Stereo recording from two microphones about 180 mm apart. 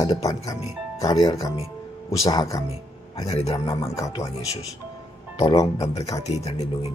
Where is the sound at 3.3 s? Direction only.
35° left (ahead or behind).